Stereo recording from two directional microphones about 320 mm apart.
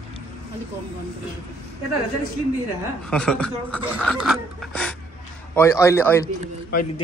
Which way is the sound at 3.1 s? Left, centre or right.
Centre.